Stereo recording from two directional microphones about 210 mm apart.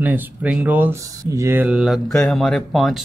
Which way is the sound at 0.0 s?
5° right (ahead or behind).